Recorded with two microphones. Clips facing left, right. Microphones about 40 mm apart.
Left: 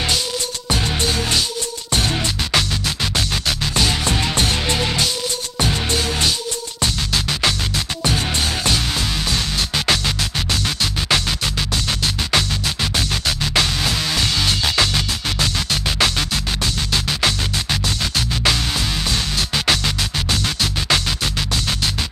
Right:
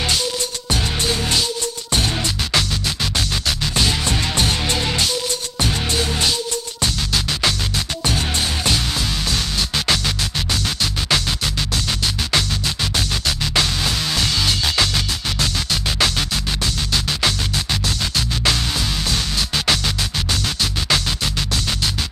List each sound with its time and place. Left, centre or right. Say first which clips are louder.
2.5 s music: left 1 dB; centre
6.8 s music: left 1 dB; centre
9.3 s music: left 1 dB; centre